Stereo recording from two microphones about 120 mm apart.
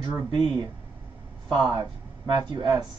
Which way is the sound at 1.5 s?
40° right (ahead or behind).